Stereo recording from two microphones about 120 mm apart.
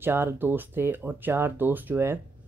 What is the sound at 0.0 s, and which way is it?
Speech, 20° right (ahead or behind).